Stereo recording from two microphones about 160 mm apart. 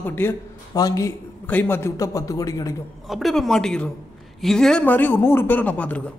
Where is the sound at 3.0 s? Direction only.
Centre (ahead or behind).